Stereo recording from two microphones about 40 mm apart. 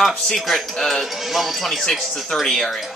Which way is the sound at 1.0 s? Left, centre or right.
Centre.